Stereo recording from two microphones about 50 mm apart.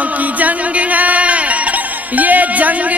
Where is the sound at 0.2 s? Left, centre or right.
Right.